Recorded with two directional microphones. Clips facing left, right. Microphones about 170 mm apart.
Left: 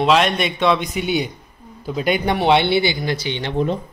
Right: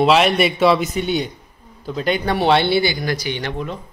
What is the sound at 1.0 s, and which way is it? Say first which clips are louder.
Speech: even; 10° left (ahead or behind).